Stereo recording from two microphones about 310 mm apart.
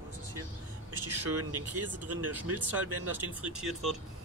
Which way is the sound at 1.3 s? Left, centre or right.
Right.